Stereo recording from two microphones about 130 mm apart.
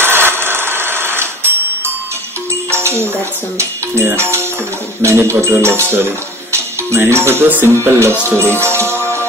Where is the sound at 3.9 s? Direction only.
20° right (ahead or behind).